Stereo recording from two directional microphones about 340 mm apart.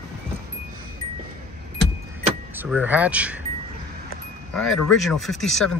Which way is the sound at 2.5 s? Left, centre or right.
Centre.